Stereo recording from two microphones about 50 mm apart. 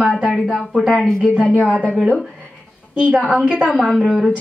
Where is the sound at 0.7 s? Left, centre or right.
Centre.